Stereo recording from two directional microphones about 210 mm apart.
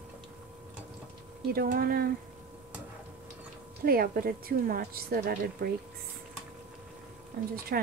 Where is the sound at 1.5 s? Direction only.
45° right (ahead or behind).